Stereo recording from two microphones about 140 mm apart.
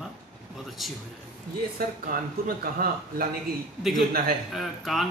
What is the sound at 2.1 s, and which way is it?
Speech, 90° right.